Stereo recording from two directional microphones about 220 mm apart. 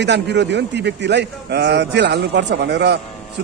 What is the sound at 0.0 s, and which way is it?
A man's voice, 50° right (ahead or behind).